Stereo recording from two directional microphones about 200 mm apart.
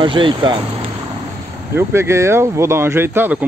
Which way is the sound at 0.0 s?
25° right (ahead or behind).